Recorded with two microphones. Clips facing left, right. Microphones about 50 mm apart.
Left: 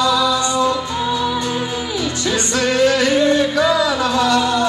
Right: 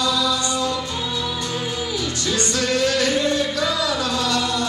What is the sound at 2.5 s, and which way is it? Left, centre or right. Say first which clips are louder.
Music: left 6 dB; left.